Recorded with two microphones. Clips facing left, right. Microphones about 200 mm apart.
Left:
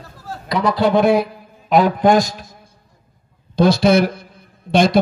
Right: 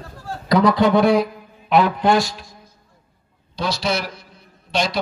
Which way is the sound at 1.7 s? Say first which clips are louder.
Left 3 dB; 40° left (ahead or behind).